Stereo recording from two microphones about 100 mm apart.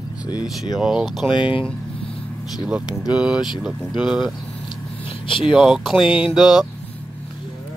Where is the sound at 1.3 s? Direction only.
55° left (ahead or behind).